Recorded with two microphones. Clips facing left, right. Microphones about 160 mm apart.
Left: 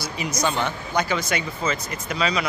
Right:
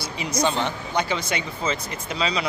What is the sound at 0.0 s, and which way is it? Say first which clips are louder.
Speech: right 1 dB; 30° right (ahead or behind).